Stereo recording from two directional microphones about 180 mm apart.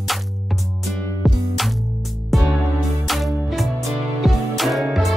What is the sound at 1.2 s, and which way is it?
Music, centre (ahead or behind).